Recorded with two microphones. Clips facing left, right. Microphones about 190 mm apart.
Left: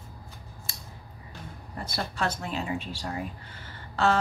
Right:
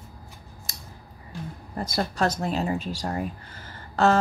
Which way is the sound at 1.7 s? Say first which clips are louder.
Right 6 dB; 40° right (ahead or behind).